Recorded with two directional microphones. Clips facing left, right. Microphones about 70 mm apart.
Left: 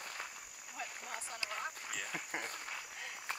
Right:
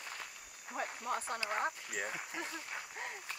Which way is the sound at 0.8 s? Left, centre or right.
Right.